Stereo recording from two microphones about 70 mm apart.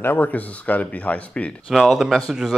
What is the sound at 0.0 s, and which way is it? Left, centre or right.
Speech, left.